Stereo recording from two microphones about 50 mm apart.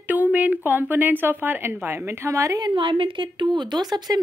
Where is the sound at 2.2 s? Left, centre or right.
Right.